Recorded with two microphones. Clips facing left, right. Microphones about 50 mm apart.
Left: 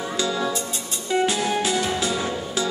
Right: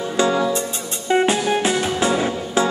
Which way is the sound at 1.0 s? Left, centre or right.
Right.